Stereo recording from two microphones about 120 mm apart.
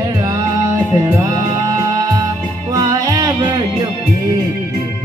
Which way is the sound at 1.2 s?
30° right (ahead or behind).